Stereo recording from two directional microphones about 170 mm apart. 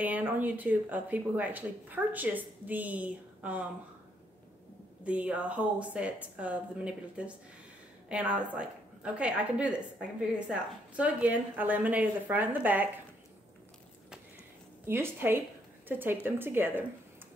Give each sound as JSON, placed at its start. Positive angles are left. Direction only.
{"t": 0.0, "sound": "speech", "side_deg": -10}
{"t": 5.0, "sound": "speech", "side_deg": -10}
{"t": 14.9, "sound": "speech", "side_deg": -15}